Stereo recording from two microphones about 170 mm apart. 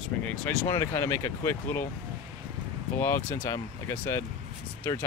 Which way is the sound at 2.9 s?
15° left (ahead or behind).